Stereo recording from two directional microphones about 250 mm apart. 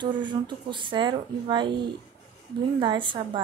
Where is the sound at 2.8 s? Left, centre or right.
Centre.